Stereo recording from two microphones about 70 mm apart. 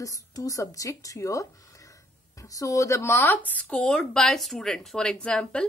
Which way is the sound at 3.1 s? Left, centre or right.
Left.